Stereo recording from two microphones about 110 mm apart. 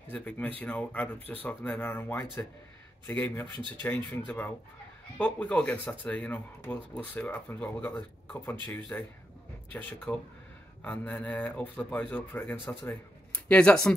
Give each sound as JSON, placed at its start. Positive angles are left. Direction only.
{"t": 0.1, "sound": "speech", "side_deg": 15}